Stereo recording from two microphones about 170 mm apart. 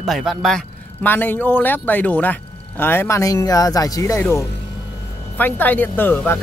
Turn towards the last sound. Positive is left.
turn(degrees=10)  # may be behind; listen again after turning